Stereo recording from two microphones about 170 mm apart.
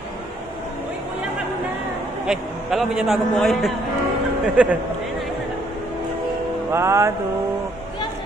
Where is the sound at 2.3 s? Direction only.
5° right (ahead or behind).